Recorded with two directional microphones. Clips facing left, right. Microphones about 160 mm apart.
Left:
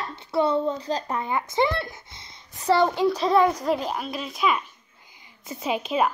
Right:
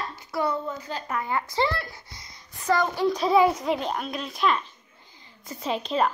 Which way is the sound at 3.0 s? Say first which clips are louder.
Right 3 dB; 5° right (ahead or behind).